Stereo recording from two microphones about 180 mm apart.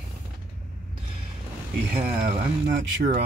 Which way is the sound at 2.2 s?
50° right (ahead or behind).